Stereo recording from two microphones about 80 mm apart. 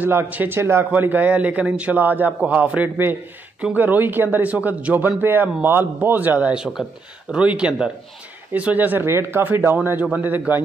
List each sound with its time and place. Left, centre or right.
0.0 s speech: right
6.5 s speech: centre
7.3 s speech: centre